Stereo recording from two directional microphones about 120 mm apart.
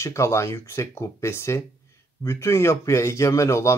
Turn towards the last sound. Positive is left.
turn(degrees=25)  # may be behind; listen again after turning